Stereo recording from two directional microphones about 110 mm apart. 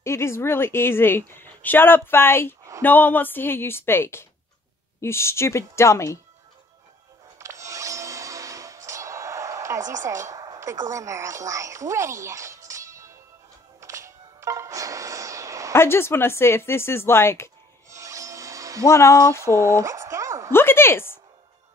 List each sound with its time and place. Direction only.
0.0 s a woman's voice: 25° left (ahead or behind)
7.3 s music: 25° right (ahead or behind)
10.0 s a woman's voice: 30° right (ahead or behind)
13.7 s music: 30° right (ahead or behind)
15.7 s a woman's voice: 20° left (ahead or behind)
17.8 s rub: 30° right (ahead or behind)
18.9 s a woman's voice: 25° left (ahead or behind)
19.5 s a sound: 25° right (ahead or behind)
20.5 s a sound: 20° left (ahead or behind)